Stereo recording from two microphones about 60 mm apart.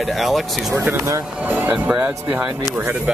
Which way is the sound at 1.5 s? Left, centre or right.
Right.